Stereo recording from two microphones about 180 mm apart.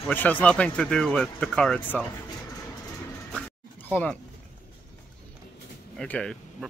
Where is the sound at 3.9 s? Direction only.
10° left (ahead or behind).